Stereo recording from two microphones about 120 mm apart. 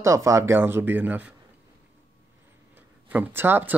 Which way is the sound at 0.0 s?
25° right (ahead or behind).